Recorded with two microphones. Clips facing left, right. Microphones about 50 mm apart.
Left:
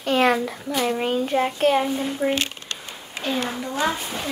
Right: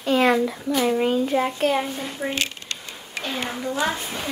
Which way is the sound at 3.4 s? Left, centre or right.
Centre.